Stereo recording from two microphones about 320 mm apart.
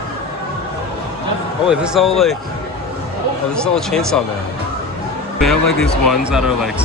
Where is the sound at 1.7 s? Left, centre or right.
Centre.